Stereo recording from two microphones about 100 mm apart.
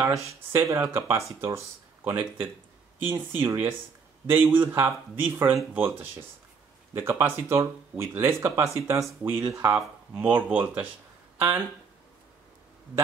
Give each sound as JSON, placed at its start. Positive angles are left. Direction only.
{"t": 0.5, "sound": "speech", "side_deg": -25}
{"t": 10.1, "sound": "speech", "side_deg": -15}